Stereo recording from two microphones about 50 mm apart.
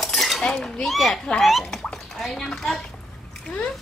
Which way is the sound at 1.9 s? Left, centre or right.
Centre.